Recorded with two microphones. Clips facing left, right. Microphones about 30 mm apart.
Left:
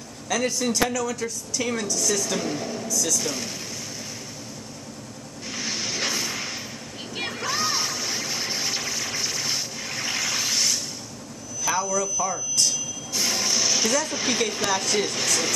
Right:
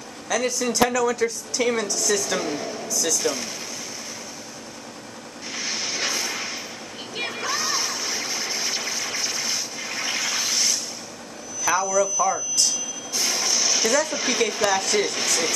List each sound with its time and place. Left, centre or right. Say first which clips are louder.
0.7 s speech: right 6 dB; centre
1.2 s a woman's voice: right 5 dB; right
5.5 s vehicle: right 1 dB; centre
7.2 s a sound: right 1 dB; centre
7.5 s music: left 1 dB; centre
8.5 s a sound: right 1 dB; centre
9.8 s toilet flush: right 1 dB; centre
11.7 s a sound: right 3 dB; centre
12.0 s speech: right 5 dB; centre
12.5 s speech: even; centre